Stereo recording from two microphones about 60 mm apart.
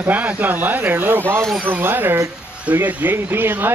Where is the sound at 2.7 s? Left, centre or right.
Right.